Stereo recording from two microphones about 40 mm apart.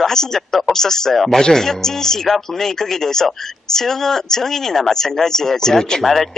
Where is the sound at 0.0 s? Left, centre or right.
Centre.